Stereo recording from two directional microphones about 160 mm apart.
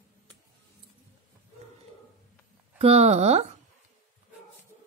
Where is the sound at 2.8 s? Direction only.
40° right (ahead or behind).